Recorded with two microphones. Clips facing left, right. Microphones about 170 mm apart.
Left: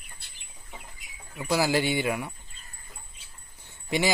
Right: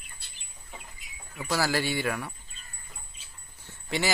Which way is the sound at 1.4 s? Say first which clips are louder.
Left 3 dB; 15° left (ahead or behind).